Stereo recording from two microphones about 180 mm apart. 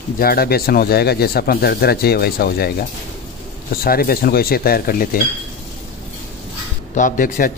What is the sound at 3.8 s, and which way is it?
Speech, 55° left (ahead or behind).